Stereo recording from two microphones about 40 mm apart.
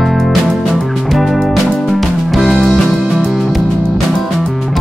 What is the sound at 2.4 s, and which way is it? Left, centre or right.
Music, centre.